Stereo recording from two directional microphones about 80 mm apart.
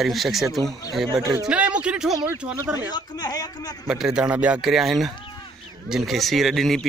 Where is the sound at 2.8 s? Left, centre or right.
Left.